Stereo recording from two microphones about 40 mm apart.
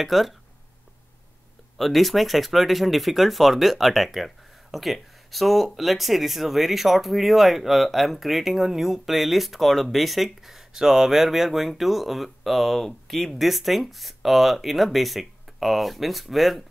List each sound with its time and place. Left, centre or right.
0.0 s speech: centre
1.8 s speech: centre